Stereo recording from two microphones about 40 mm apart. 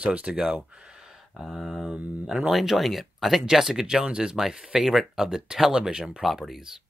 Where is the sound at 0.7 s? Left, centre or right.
Right.